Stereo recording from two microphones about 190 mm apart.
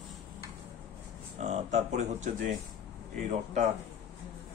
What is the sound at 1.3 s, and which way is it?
Speech, 40° right (ahead or behind).